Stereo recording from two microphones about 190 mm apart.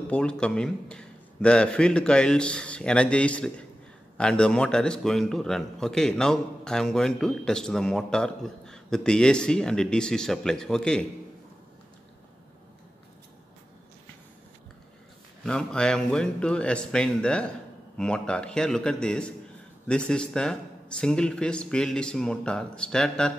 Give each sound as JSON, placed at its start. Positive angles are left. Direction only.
{"t": 0.1, "sound": "a man's voice", "side_deg": 5}
{"t": 15.4, "sound": "a man's voice", "side_deg": 5}